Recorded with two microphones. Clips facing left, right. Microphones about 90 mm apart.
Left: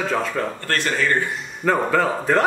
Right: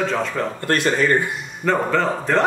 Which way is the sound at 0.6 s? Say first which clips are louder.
Right 6 dB; 20° right (ahead or behind).